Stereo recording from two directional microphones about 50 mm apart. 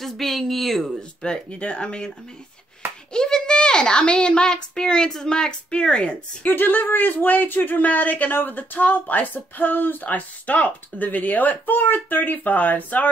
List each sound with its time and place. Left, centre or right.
0.0 s a woman's voice: centre
1.2 s a child's voice: centre
6.4 s speech: left